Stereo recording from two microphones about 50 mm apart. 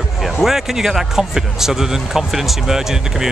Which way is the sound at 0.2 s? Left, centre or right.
Centre.